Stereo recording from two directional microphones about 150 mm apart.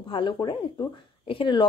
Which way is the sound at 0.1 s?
35° left (ahead or behind).